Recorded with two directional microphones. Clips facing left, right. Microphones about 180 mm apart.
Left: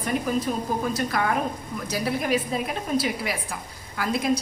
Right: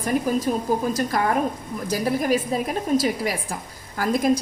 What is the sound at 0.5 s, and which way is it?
A woman's voice, 40° right (ahead or behind).